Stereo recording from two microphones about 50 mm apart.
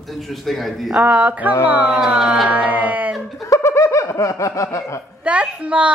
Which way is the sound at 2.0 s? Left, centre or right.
Centre.